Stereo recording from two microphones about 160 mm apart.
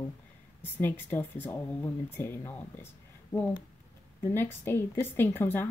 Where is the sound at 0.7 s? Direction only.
15° left (ahead or behind).